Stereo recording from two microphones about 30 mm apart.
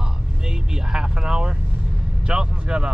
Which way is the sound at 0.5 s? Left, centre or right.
Centre.